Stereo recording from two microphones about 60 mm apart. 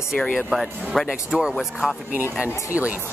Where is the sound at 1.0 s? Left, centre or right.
Centre.